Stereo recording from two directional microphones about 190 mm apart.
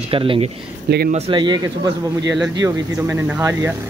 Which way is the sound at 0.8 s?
55° right (ahead or behind).